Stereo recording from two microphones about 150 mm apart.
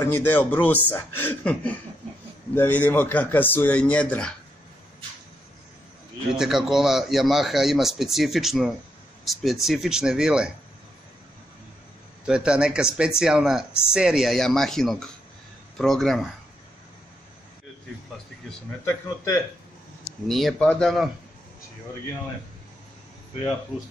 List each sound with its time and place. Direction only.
0.0 s a man's voice: 15° left (ahead or behind)
6.3 s a man's voice: 5° right (ahead or behind)
12.3 s a man's voice: 5° right (ahead or behind)
18.9 s speech: 20° left (ahead or behind)
20.2 s a man's voice: centre (ahead or behind)